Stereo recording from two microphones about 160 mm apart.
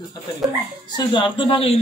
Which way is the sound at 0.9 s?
30° left (ahead or behind).